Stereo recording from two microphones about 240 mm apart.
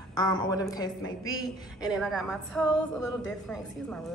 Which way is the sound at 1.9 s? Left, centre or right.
Centre.